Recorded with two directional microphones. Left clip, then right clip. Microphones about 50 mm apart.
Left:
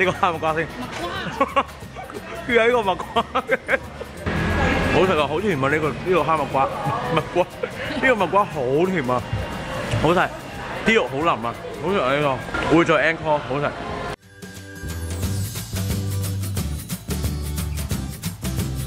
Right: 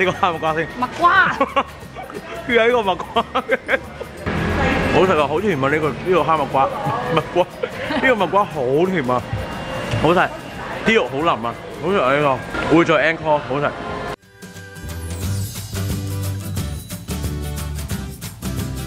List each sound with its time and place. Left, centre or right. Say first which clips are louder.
0.0 s speech: right 2 dB; centre
1.0 s speech: right 17 dB; right
1.4 s speech: right 2 dB; centre
4.6 s music: right 3 dB; left
5.0 s speech: right 3 dB; centre
10.7 s speech: right 2 dB; centre
12.7 s speech: right 3 dB; centre
13.7 s music: right 2 dB; left
16.5 s music: right 1 dB; centre